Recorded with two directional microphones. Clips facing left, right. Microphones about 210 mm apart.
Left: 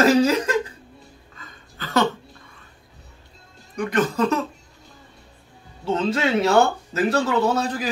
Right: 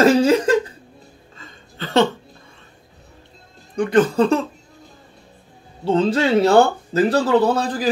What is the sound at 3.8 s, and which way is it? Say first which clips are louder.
Speech: right 6 dB; 30° right (ahead or behind).